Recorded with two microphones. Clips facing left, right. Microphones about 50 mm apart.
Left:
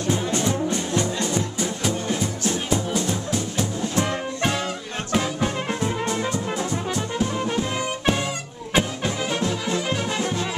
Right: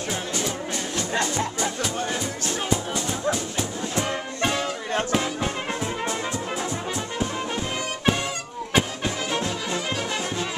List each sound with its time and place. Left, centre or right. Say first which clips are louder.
0.3 s music: left 5 dB; left
2.9 s music: left 1 dB; centre
6.5 s brass instrument: left 2 dB; centre
8.7 s music: left 1 dB; centre